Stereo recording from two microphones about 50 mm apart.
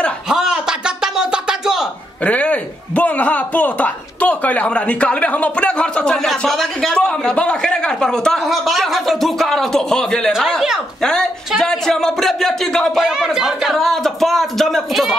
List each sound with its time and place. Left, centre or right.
0.3 s a sound: centre
2.2 s a man's voice: left
6.1 s speech: centre
6.9 s a man's voice: centre
8.5 s speech: centre
11.0 s a sound: centre
13.0 s speech: centre
13.7 s speech: centre